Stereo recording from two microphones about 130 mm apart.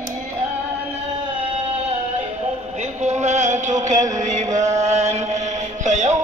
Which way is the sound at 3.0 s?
60° right (ahead or behind).